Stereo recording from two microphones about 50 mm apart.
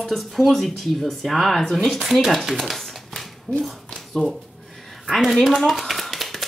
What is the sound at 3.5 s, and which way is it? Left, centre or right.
Speech, left.